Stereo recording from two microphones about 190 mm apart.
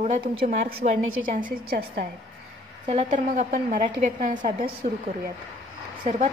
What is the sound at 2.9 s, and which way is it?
A woman's voice, 40° right (ahead or behind).